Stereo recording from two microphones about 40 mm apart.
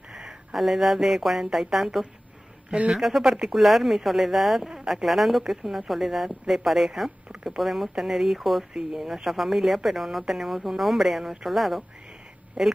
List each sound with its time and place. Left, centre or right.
0.1 s a sound: centre
0.6 s a woman's voice: centre
3.3 s speech: centre
3.5 s a woman's voice: centre
12.6 s a woman's voice: centre